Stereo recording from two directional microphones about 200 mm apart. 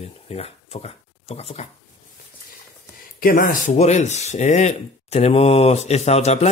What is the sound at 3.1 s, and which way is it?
Speech, 45° left (ahead or behind).